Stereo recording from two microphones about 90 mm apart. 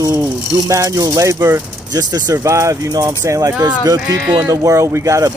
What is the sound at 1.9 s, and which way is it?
Speech, 45° right (ahead or behind).